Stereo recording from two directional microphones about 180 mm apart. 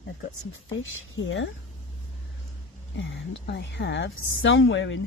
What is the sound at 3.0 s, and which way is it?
A woman's voice, 90° left.